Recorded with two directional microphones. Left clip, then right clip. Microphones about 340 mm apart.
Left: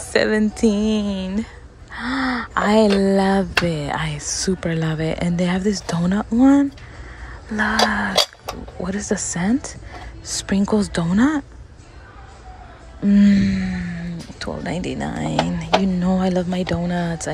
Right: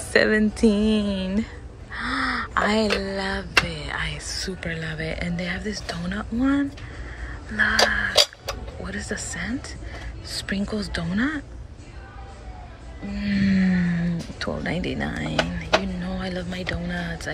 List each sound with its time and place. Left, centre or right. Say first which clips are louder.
0.1 s speech: left 1 dB; centre
2.5 s speech: left 7 dB; centre
10.7 s speech: left 8 dB; centre
13.1 s speech: left 10 dB; centre
13.6 s speech: right 3 dB; centre